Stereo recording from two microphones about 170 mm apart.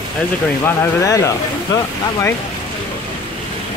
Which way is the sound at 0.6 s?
20° left (ahead or behind).